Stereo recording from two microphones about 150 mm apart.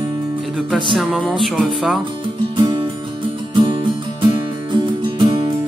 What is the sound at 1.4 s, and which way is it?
Speech, centre (ahead or behind).